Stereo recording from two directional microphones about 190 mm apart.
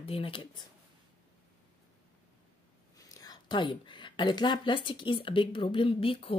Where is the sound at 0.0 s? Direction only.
30° left (ahead or behind).